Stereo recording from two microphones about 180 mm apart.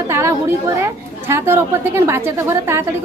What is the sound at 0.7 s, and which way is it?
A man's voice, 15° right (ahead or behind).